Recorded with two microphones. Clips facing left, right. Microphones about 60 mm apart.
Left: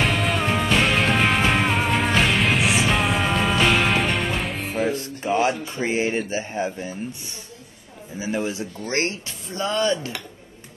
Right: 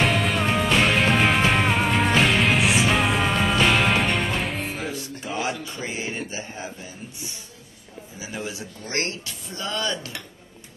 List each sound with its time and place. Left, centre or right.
0.0 s music: centre
4.9 s speech: left
8.2 s speech: left